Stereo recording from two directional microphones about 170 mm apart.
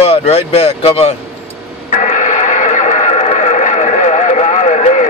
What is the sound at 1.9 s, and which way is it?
Radio, 50° left (ahead or behind).